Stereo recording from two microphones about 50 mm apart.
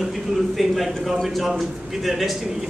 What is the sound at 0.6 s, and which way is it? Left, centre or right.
A man's voice, centre.